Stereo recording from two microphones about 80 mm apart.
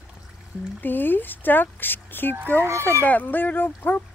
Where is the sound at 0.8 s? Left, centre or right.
Left.